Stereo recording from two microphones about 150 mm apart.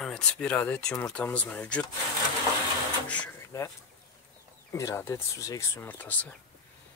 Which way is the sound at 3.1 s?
10° left (ahead or behind).